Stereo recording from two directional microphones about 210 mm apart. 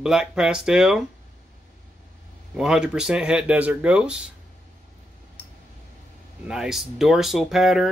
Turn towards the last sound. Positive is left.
turn(degrees=0)  # may be behind; listen again after turning